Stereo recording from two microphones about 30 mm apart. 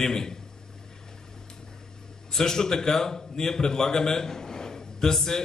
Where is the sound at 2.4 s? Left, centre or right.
Centre.